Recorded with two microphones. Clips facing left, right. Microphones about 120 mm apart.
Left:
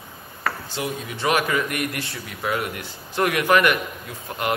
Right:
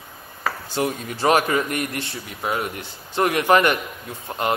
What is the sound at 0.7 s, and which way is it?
Speech, 50° right (ahead or behind).